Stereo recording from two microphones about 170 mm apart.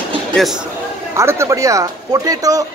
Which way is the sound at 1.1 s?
15° right (ahead or behind).